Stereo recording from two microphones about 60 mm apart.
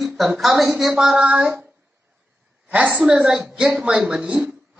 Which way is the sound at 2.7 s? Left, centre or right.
Right.